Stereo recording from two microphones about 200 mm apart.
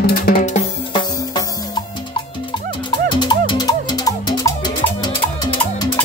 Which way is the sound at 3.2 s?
20° left (ahead or behind).